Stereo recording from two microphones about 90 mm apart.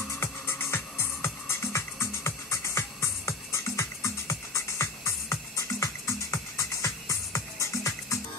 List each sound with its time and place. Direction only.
0.1 s music: 30° left (ahead or behind)